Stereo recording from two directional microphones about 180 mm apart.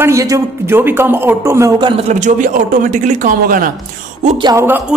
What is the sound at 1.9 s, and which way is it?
A woman's voice, 45° right (ahead or behind).